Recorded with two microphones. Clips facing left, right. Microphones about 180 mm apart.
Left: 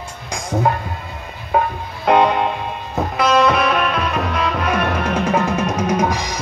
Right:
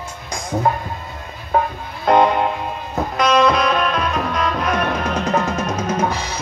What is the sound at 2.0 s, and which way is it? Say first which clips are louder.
Music: even; 10° left (ahead or behind).